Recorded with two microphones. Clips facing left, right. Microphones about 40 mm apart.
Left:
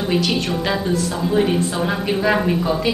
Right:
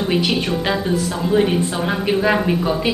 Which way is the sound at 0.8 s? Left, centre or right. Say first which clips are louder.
Right 1 dB; centre.